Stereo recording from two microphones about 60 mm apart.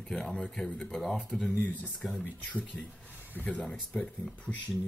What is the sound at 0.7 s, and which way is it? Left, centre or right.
Speech, centre.